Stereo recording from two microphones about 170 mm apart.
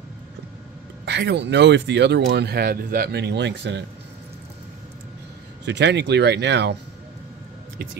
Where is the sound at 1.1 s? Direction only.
90° right.